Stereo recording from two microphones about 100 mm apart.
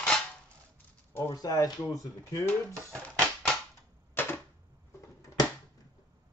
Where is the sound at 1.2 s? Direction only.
35° left (ahead or behind).